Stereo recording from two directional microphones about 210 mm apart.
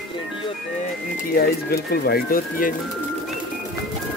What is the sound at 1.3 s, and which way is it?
Speech, 45° left (ahead or behind).